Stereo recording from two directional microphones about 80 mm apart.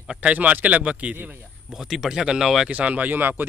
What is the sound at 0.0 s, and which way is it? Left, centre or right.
A man's voice, centre.